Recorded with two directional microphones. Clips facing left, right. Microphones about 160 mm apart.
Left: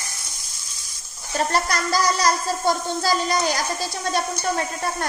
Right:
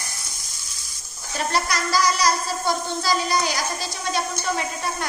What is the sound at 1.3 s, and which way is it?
Speech, 50° left (ahead or behind).